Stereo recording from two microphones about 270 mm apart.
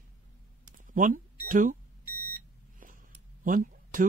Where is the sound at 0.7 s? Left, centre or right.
Right.